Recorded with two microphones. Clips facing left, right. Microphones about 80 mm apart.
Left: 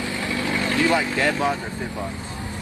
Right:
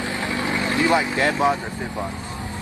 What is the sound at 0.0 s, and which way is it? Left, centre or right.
Speech, right.